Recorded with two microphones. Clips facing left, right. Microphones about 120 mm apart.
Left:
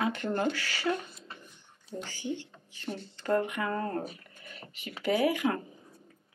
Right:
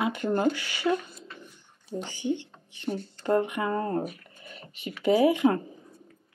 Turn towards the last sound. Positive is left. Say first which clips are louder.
# right 6 dB
turn(degrees=-25)  # may be behind; listen again after turning